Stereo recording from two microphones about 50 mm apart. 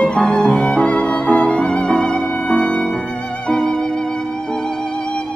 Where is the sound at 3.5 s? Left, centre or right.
Centre.